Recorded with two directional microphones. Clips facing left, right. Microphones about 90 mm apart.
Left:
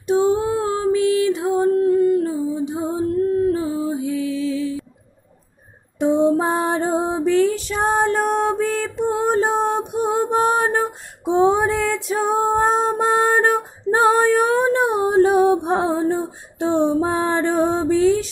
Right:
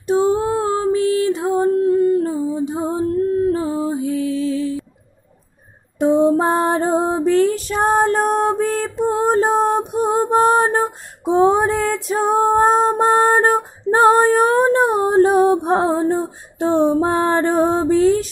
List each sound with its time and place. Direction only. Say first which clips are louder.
0.0 s female singing: right 1 dB; 35° right (ahead or behind)
2.0 s humming: right 1 dB; 35° right (ahead or behind)
2.8 s female singing: right 1 dB; 40° right (ahead or behind)
5.9 s female singing: right 2 dB; 45° right (ahead or behind)